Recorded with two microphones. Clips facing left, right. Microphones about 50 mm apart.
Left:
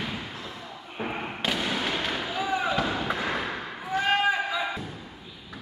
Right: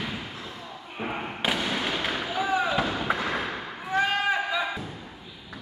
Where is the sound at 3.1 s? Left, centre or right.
Centre.